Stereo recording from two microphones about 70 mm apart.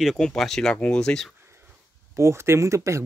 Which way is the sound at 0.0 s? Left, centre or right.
Centre.